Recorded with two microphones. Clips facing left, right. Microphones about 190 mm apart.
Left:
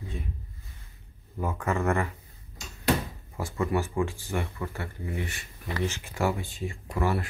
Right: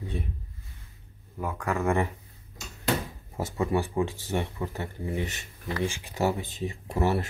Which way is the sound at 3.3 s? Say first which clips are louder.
Right 1 dB; 20° right (ahead or behind).